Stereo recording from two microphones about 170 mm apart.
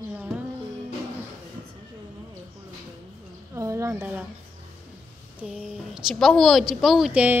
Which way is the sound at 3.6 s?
20° right (ahead or behind).